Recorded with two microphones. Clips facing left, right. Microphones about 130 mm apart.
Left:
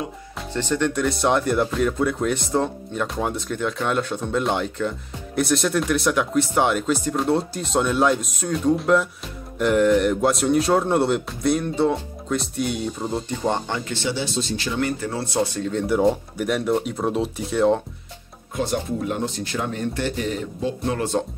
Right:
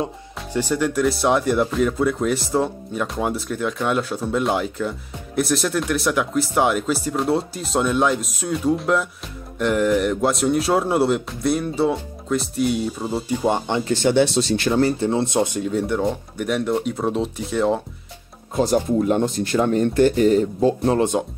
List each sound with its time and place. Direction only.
0.5 s speech: 10° right (ahead or behind)
13.8 s speech: 45° right (ahead or behind); by 14.7 s 70° right (ahead or behind)
14.7 s speech: 30° right (ahead or behind); by 17.8 s centre (ahead or behind)
18.5 s speech: 40° right (ahead or behind)
19.1 s speech: 50° right (ahead or behind)
21.0 s speech: 15° right (ahead or behind)